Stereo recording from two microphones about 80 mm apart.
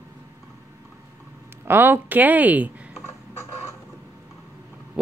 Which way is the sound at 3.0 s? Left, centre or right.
Left.